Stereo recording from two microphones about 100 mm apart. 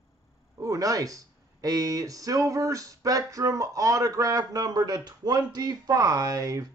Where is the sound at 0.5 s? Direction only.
35° right (ahead or behind).